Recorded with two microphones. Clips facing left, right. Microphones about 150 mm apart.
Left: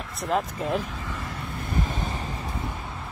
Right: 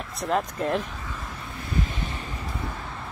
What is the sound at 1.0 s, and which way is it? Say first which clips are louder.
Vehicle: left 2 dB; 90° left.